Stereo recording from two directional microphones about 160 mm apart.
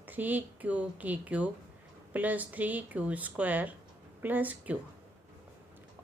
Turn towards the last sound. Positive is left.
turn(degrees=-10)  # may be behind; listen again after turning